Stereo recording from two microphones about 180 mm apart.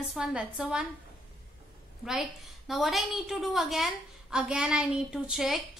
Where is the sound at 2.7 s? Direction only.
Centre (ahead or behind).